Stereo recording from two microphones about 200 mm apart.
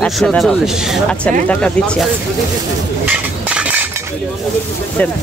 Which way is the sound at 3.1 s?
5° right (ahead or behind).